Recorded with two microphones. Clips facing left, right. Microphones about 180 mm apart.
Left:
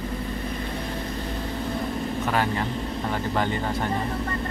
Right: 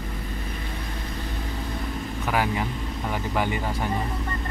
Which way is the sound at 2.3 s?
10° right (ahead or behind).